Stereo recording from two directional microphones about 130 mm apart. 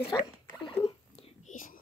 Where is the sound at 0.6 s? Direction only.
45° left (ahead or behind).